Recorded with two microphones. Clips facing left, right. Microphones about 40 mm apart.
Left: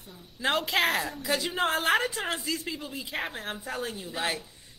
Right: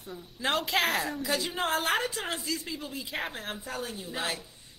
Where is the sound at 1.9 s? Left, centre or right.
Left.